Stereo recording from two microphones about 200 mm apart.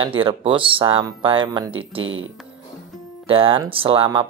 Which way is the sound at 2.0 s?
85° right.